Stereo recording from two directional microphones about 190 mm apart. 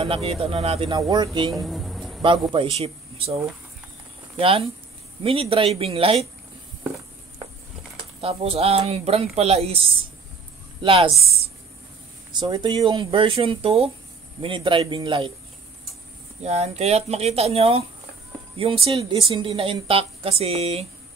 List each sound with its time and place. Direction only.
0.0 s speech: 30° right (ahead or behind)
1.5 s a sound: centre (ahead or behind)
2.5 s speech: 30° right (ahead or behind)
4.4 s speech: 30° right (ahead or behind)
8.0 s a woman's voice: 30° right (ahead or behind)
12.3 s speech: 25° right (ahead or behind)
16.4 s speech: 35° right (ahead or behind)
18.9 s speech: 25° right (ahead or behind)